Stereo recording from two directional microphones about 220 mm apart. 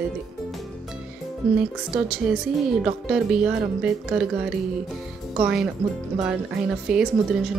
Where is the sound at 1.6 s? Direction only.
5° right (ahead or behind).